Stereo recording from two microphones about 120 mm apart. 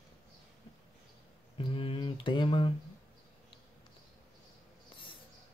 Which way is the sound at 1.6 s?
45° left (ahead or behind).